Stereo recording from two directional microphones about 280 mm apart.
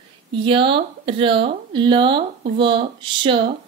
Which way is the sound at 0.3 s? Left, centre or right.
Centre.